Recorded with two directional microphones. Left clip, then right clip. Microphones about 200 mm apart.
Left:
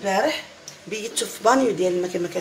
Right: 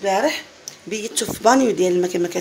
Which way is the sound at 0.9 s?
45° right (ahead or behind).